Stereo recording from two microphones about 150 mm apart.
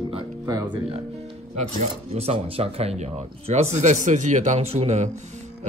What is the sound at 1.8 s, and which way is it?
Speech, 45° right (ahead or behind).